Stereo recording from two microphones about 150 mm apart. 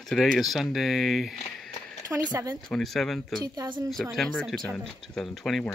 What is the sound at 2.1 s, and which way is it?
Speech, 15° right (ahead or behind).